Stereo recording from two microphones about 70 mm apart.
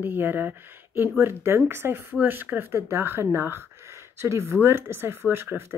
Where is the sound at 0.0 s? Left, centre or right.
Right.